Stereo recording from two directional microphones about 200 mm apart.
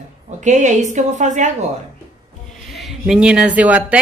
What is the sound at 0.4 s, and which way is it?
A woman's voice, 35° right (ahead or behind).